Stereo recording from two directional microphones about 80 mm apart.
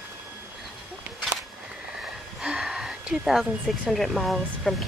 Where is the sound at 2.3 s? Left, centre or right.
Centre.